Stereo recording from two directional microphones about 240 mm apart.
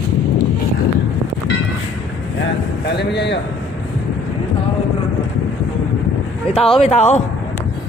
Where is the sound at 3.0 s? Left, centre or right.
Left.